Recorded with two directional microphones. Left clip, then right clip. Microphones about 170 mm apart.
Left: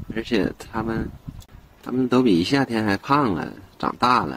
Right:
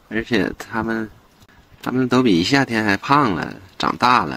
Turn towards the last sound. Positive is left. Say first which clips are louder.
# right 4 dB
turn(degrees=-25)  # may be behind; listen again after turning